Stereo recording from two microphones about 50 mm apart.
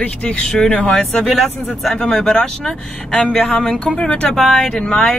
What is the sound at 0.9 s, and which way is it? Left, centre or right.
Speech, centre.